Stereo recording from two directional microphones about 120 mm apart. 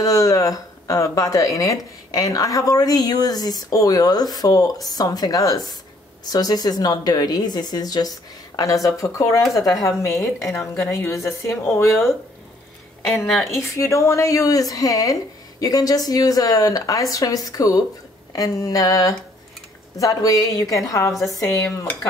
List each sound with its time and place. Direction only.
0.0 s speech: 30° left (ahead or behind)
13.3 s speech: centre (ahead or behind)
13.7 s speech: 25° left (ahead or behind)
21.1 s speech: centre (ahead or behind)
21.4 s speech: 25° left (ahead or behind)